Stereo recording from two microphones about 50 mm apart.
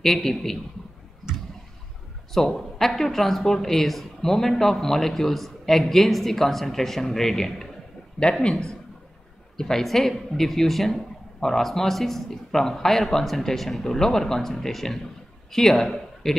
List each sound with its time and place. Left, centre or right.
0.0 s speech: centre
2.3 s speech: centre
8.2 s speech: centre